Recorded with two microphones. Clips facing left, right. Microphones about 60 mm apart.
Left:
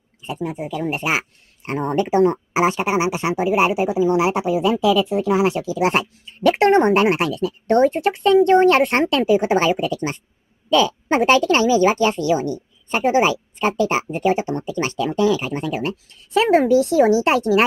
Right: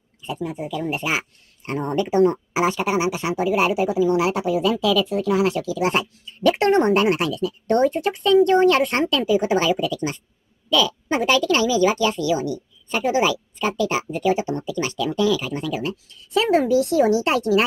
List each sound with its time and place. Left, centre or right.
0.2 s speech: left
17.1 s speech: left